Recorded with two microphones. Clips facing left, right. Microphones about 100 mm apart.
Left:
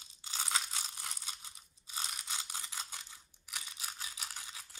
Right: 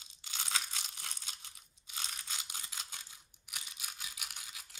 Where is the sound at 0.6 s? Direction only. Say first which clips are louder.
Even; 35° left (ahead or behind).